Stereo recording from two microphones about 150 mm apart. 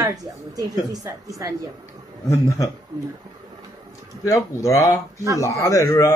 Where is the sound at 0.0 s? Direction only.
25° right (ahead or behind).